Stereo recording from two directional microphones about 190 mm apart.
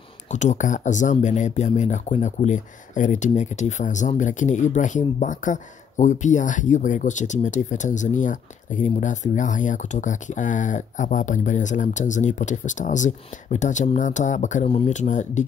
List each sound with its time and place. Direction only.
0.3 s speech: 40° left (ahead or behind)